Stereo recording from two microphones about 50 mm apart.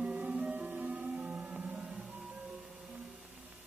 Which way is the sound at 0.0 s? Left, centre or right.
Right.